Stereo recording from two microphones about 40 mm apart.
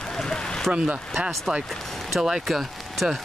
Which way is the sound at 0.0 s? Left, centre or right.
Centre.